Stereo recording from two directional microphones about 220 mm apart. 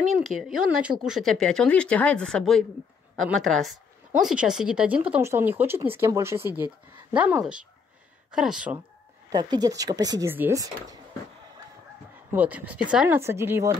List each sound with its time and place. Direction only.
0.0 s a woman's voice: centre (ahead or behind)
9.3 s speech: 20° right (ahead or behind)
12.3 s speech: 5° right (ahead or behind)